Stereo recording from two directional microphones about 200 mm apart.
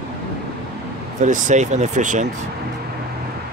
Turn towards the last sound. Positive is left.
turn(degrees=-40)  # may be behind; listen again after turning